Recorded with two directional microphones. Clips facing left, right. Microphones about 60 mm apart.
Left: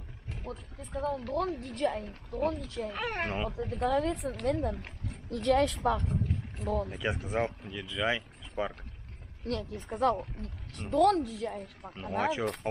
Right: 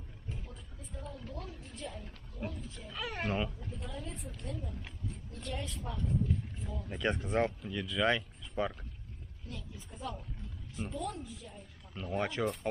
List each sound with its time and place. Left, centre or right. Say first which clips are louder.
0.4 s speech: left 9 dB; left
2.9 s speech: left 3 dB; left
3.4 s a woman's voice: left 14 dB; left
4.4 s speech: left 13 dB; left
5.1 s speech: left 17 dB; left
6.9 s speech: even; centre
9.4 s speech: left 13 dB; left
12.2 s speech: left 5 dB; centre